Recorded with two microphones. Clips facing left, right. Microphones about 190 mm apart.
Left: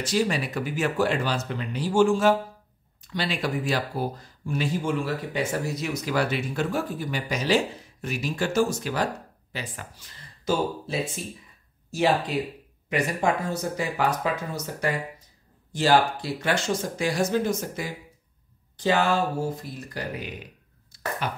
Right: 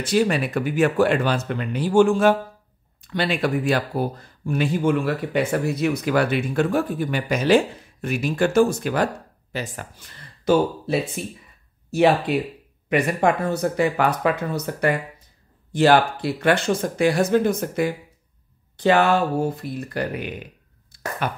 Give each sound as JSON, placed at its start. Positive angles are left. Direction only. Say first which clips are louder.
{"t": 0.0, "sound": "speech", "louder": "right 5 dB", "side_deg": -60}